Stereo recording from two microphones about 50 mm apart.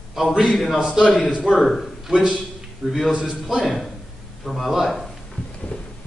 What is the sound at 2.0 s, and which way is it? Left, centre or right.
Speech, centre.